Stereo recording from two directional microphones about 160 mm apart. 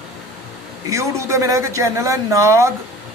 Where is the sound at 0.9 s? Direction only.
20° right (ahead or behind).